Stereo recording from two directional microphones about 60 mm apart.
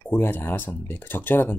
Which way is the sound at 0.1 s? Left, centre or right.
Left.